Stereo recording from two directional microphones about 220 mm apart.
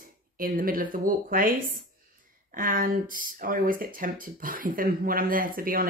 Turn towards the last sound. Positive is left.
turn(degrees=-40)  # may be behind; listen again after turning